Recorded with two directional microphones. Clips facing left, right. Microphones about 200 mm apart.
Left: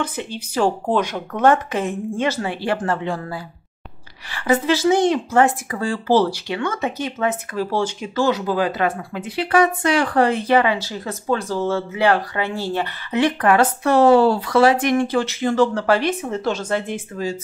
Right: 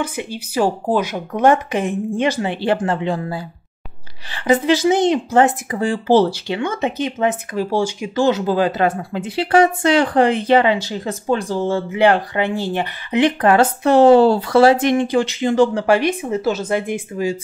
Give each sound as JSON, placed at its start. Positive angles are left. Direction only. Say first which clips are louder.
{"t": 0.0, "sound": "speech", "louder": "right 2 dB", "side_deg": -10}
{"t": 8.3, "sound": "speech", "louder": "right 4 dB", "side_deg": -25}